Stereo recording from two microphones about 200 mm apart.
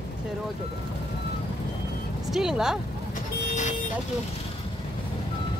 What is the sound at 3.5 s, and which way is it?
Vehicle, 35° left (ahead or behind).